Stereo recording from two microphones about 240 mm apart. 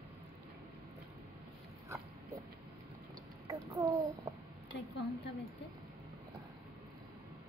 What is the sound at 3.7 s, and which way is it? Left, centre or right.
Speech, centre.